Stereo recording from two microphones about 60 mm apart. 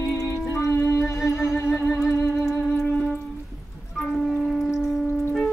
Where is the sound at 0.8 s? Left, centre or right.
Left.